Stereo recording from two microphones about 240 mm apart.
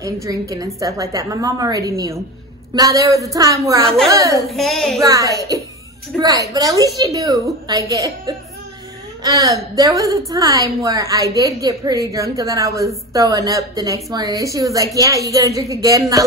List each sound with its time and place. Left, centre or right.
0.0 s a woman's voice: centre
4.5 s a child's voice: centre
5.0 s a woman's voice: centre